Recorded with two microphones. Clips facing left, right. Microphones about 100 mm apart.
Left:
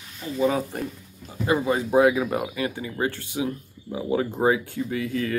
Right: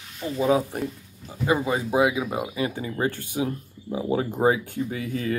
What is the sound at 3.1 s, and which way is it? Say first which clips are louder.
Speech: right 1 dB; 50° right (ahead or behind).